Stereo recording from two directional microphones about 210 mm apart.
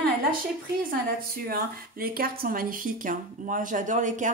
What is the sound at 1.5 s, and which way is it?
Speech, 45° right (ahead or behind).